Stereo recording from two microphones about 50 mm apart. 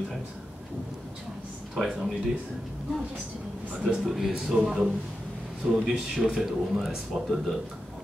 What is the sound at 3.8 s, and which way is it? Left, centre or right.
A man's voice, centre.